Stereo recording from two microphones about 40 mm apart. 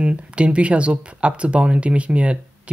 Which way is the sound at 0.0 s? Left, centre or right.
Right.